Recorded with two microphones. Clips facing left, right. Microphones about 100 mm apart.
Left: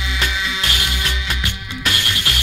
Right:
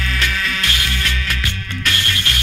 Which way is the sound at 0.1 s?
15° left (ahead or behind).